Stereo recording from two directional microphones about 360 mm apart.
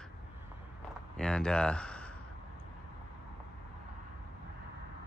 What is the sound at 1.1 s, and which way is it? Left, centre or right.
Speech, centre.